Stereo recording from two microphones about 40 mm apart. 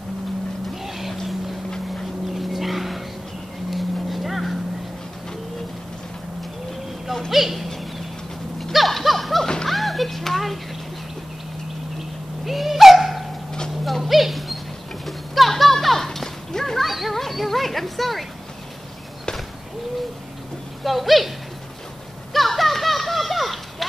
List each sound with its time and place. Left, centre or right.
0.8 s vehicle: centre
2.3 s vehicle: centre
7.2 s speech: centre
8.7 s a sound: centre
9.7 s music: centre
12.4 s owl: centre
13.8 s clip-clop: centre
15.0 s children playing: centre
20.8 s a sound: centre
22.3 s a sound: centre